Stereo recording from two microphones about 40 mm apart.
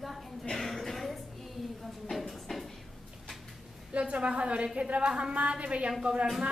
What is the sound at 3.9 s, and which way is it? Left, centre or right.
A woman's voice, right.